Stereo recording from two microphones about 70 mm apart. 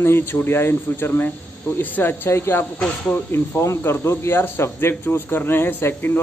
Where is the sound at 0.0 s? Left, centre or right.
Left.